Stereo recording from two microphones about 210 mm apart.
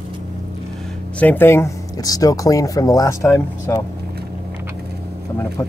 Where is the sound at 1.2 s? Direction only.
10° left (ahead or behind).